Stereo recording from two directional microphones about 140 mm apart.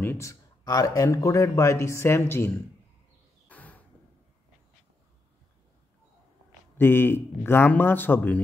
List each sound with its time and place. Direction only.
0.0 s speech: 20° left (ahead or behind)
3.4 s a sound: 10° left (ahead or behind)
6.8 s a man's voice: 15° left (ahead or behind)